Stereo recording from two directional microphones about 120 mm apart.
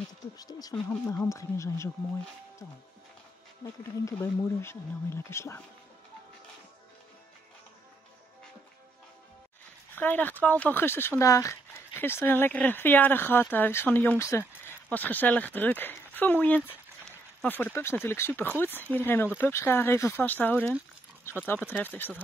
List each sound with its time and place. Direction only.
0.4 s speech: 30° left (ahead or behind)
0.8 s speech: 20° left (ahead or behind)
4.0 s speech: 20° left (ahead or behind)
9.9 s speech: 15° left (ahead or behind)